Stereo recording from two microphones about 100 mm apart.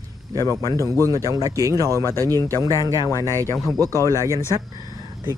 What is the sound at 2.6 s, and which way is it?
Speech, 35° right (ahead or behind).